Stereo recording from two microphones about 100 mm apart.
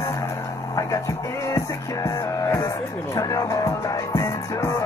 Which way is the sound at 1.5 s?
30° left (ahead or behind).